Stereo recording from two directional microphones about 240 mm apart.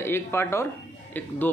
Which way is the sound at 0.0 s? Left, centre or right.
Centre.